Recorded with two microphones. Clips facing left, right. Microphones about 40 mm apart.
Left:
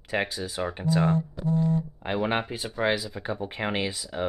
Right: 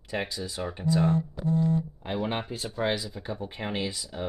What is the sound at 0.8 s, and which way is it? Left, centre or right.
Speech, left.